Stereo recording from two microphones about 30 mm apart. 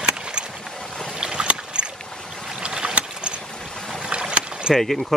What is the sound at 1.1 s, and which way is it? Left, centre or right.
Boat, right.